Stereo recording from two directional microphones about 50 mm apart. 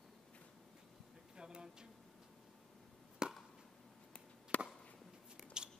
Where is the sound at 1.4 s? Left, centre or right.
Centre.